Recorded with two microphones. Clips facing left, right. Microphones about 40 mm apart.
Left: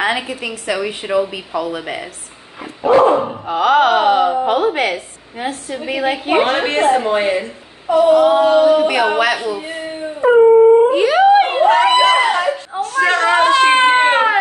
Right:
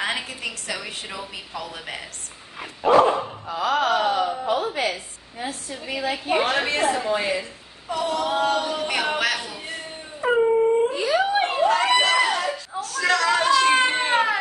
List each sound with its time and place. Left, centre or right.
0.0 s a woman's voice: left
3.1 s speech: left
3.4 s a woman's voice: left
7.9 s a woman's voice: left
8.7 s a sound: centre
9.4 s speech: centre
10.4 s dog: left
10.9 s a sound: left